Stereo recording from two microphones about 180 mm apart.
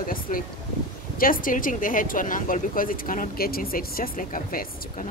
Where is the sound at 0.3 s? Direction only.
45° left (ahead or behind).